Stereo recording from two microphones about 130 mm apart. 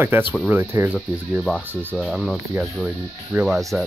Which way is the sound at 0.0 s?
15° right (ahead or behind).